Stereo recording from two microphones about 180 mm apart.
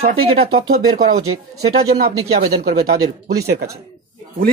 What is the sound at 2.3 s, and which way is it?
Speech, 60° right (ahead or behind).